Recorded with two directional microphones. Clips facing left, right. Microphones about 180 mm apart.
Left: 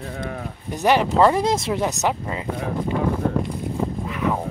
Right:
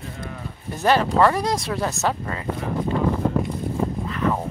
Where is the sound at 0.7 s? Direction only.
15° left (ahead or behind).